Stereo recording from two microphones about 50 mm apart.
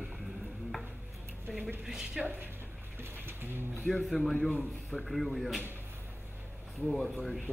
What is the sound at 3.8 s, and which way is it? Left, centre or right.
Speech, centre.